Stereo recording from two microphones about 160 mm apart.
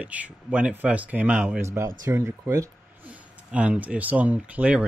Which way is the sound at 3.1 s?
10° right (ahead or behind).